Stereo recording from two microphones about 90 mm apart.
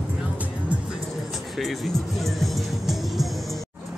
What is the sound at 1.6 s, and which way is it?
Speech, centre (ahead or behind).